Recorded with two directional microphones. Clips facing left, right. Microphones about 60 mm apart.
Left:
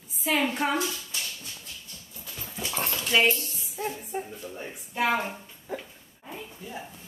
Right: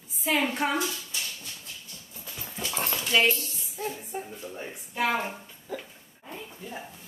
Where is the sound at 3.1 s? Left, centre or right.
Centre.